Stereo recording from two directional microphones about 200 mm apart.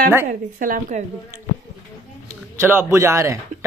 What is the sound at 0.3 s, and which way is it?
Speech, 45° right (ahead or behind).